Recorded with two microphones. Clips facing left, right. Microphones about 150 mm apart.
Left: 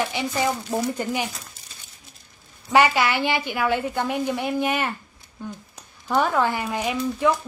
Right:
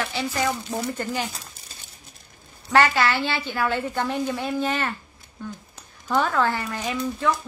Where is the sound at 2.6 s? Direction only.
10° left (ahead or behind).